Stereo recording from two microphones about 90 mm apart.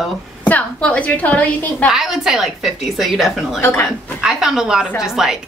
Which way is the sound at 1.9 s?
5° right (ahead or behind).